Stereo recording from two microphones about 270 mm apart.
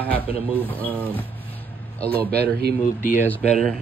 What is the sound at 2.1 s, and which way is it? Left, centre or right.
Speech, right.